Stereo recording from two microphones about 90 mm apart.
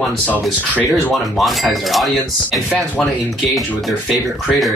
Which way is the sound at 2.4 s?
15° right (ahead or behind).